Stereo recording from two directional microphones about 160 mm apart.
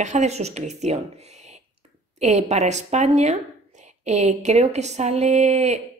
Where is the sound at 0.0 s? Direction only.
45° right (ahead or behind).